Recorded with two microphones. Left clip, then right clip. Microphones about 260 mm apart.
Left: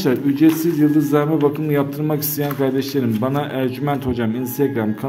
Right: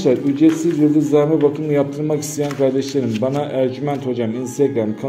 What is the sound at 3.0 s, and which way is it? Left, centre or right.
Speech, left.